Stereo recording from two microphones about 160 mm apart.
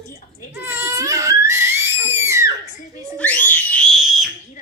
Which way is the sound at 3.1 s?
10° left (ahead or behind).